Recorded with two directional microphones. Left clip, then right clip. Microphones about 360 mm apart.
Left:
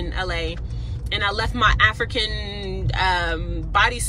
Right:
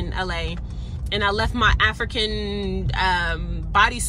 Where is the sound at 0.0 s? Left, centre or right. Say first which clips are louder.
Left 1 dB; centre.